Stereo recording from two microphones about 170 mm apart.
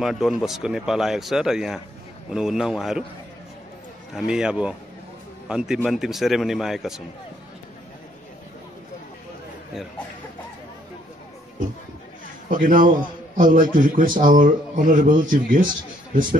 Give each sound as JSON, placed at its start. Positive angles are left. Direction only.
{"t": 0.0, "sound": "speech", "side_deg": 0}
{"t": 4.1, "sound": "speech", "side_deg": -5}
{"t": 12.4, "sound": "speech", "side_deg": -50}